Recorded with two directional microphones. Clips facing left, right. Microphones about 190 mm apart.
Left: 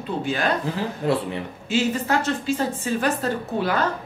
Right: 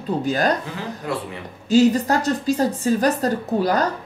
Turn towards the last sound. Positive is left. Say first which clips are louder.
# right 4 dB
turn(degrees=-40)  # may be behind; listen again after turning